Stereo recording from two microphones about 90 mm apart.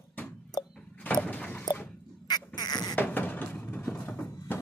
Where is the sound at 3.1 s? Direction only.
20° left (ahead or behind).